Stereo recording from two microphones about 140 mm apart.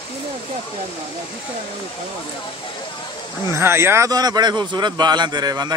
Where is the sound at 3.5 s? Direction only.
20° right (ahead or behind).